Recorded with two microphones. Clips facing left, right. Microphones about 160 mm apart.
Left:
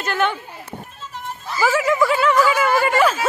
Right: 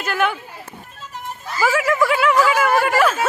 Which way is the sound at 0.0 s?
5° right (ahead or behind).